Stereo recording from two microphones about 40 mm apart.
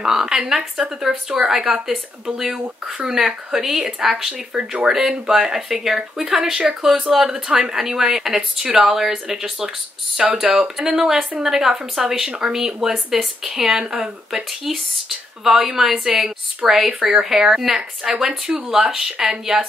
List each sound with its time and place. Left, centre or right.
0.0 s speech: centre
4.3 s speech: right
4.8 s speech: centre
7.2 s speech: centre